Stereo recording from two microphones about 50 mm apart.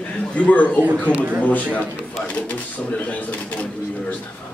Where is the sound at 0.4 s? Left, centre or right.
Left.